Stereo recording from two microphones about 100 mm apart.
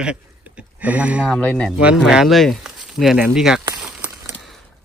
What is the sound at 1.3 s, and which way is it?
Speech, 10° left (ahead or behind).